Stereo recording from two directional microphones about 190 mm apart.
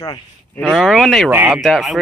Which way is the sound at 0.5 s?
Centre (ahead or behind).